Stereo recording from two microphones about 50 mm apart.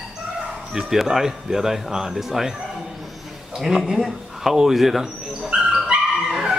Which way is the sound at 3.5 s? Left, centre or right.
Centre.